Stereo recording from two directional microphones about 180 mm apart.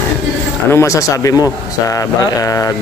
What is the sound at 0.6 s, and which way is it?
Speech, 15° left (ahead or behind).